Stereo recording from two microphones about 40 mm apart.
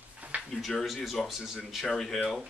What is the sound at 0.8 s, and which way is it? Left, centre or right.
Speech, centre.